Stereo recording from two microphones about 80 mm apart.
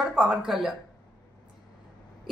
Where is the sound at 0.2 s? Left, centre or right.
Centre.